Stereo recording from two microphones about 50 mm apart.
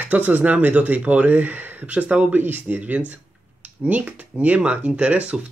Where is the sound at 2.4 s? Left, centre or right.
Right.